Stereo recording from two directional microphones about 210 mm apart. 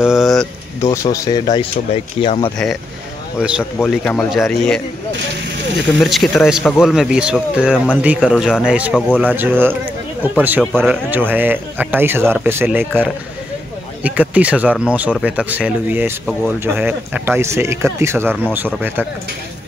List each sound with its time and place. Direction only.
0.0 s speech: centre (ahead or behind)
0.8 s speech: 15° left (ahead or behind)
3.3 s speech: 5° right (ahead or behind)
3.8 s speech: 5° left (ahead or behind)
5.9 s speech: centre (ahead or behind)